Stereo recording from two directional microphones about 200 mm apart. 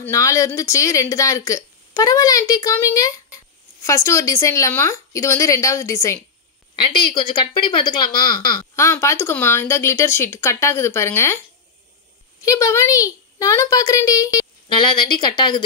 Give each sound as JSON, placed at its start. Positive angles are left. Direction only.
{"t": 0.0, "sound": "a woman's voice", "side_deg": 15}
{"t": 12.4, "sound": "speech", "side_deg": 15}